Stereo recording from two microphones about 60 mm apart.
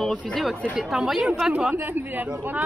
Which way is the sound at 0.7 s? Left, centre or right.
Centre.